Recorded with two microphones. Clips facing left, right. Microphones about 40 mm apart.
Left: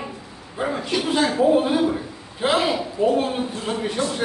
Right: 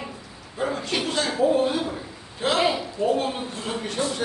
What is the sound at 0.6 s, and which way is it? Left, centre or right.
A man's voice, centre.